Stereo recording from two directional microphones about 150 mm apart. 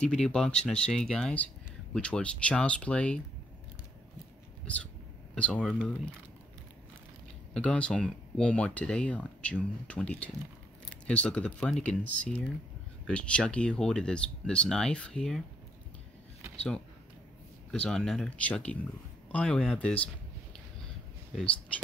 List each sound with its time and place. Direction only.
0.0 s speech: 5° left (ahead or behind)
5.3 s speech: 5° left (ahead or behind)
7.5 s speech: 5° left (ahead or behind)
16.5 s speech: 5° left (ahead or behind)